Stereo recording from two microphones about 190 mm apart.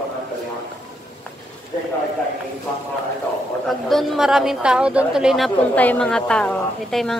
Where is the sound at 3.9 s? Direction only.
Centre (ahead or behind).